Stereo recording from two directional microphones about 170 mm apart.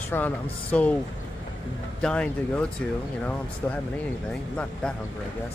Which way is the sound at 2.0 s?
5° left (ahead or behind).